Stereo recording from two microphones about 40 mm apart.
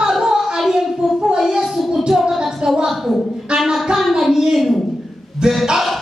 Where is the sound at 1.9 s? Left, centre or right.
Right.